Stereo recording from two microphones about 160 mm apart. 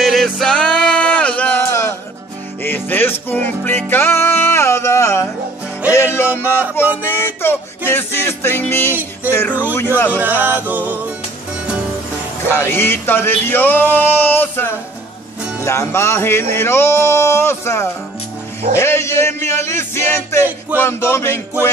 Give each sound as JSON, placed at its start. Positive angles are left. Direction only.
{"t": 0.0, "sound": "music", "side_deg": 0}
{"t": 10.1, "sound": "music", "side_deg": -10}
{"t": 12.5, "sound": "music", "side_deg": 15}